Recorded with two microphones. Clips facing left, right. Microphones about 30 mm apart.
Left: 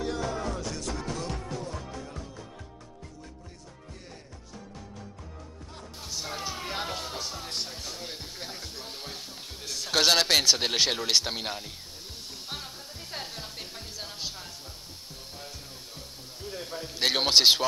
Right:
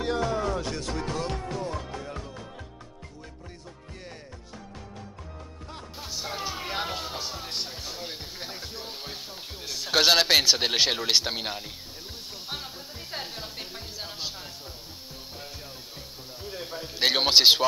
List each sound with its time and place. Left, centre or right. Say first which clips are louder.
0.0 s music: right 4 dB; right
5.9 s music: right 2 dB; centre
16.3 s speech: right 1 dB; centre